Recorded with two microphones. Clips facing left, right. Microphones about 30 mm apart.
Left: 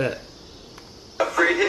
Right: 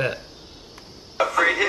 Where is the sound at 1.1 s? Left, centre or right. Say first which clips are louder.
Even; centre.